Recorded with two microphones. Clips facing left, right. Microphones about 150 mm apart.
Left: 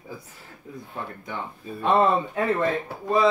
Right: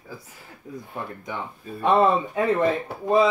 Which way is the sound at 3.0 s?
15° right (ahead or behind).